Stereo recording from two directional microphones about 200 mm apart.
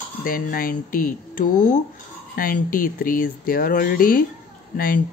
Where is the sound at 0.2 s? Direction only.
45° left (ahead or behind).